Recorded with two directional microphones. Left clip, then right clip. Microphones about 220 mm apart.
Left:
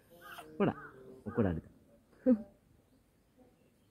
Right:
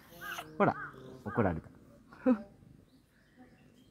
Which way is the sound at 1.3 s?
15° right (ahead or behind).